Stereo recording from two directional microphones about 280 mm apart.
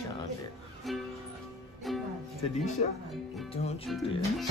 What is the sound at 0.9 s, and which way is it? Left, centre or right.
Speech, centre.